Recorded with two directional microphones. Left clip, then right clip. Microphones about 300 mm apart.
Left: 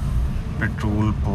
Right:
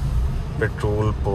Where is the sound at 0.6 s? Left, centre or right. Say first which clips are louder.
Right 3 dB; centre.